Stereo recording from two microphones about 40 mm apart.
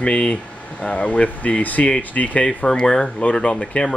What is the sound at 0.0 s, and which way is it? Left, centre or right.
Speech, left.